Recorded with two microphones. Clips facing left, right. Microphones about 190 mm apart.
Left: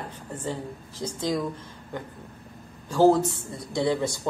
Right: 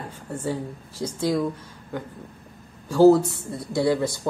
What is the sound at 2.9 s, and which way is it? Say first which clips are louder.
Speech: right 4 dB; 10° right (ahead or behind).